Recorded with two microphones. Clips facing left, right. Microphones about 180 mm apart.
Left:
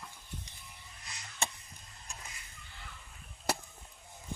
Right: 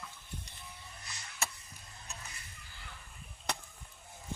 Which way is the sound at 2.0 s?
30° left (ahead or behind).